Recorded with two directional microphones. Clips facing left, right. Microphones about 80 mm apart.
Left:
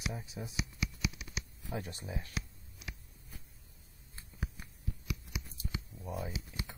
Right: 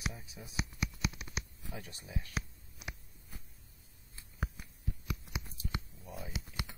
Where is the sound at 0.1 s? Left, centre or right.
Left.